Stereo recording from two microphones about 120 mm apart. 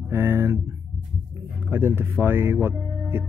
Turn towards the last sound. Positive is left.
turn(degrees=-20)  # may be behind; listen again after turning